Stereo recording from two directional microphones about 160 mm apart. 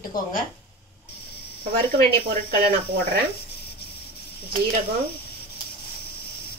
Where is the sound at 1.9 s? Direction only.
75° right (ahead or behind).